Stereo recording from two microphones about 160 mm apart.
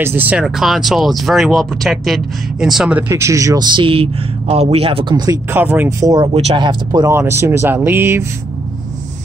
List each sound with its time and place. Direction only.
0.0 s speech: 10° right (ahead or behind)
3.7 s speech: 35° right (ahead or behind)
7.1 s speech: 15° right (ahead or behind)